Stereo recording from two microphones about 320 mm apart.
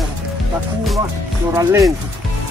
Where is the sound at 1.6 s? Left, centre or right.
Centre.